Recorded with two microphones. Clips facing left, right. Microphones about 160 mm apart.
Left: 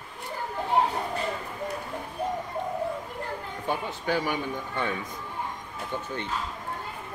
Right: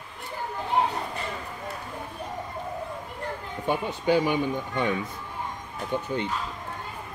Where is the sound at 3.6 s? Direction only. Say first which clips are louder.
Right 5 dB; 15° right (ahead or behind).